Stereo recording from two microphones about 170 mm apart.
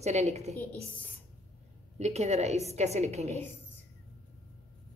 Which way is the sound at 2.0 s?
40° right (ahead or behind).